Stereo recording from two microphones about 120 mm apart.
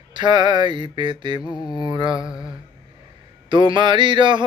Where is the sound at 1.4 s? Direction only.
35° left (ahead or behind).